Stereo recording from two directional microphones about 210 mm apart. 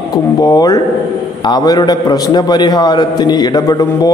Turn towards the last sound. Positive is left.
turn(degrees=15)  # may be behind; listen again after turning